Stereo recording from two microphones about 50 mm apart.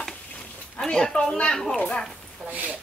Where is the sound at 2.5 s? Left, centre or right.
Right.